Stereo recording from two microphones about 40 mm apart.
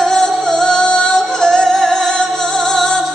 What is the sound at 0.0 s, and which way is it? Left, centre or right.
Music, centre.